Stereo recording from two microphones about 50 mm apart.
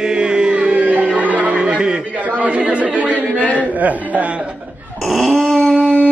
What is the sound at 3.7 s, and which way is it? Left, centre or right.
Speech, right.